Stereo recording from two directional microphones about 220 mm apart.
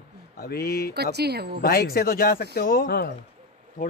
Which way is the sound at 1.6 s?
45° left (ahead or behind).